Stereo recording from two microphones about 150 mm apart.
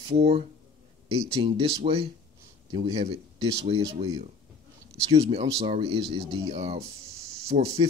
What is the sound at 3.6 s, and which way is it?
Speech, 40° right (ahead or behind).